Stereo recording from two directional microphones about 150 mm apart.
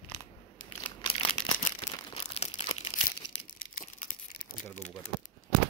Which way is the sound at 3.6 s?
70° left (ahead or behind).